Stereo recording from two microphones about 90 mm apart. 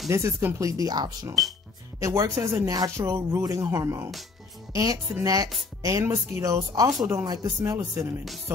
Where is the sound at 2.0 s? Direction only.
35° right (ahead or behind).